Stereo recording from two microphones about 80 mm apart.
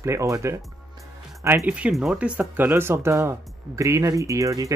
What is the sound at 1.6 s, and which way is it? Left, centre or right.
Speech, centre.